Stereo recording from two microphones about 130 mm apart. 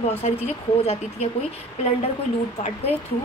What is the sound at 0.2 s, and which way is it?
Speech, 60° left (ahead or behind).